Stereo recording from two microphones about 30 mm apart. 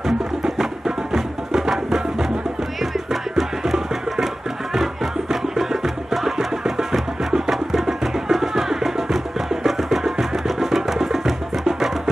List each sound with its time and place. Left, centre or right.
0.0 s music: centre
5.3 s music: centre